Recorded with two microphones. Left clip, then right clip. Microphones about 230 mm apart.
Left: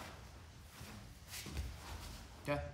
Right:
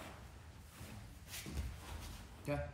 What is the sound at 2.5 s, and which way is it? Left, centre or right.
Music, centre.